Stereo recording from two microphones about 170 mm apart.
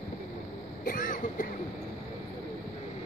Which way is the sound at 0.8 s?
55° left (ahead or behind).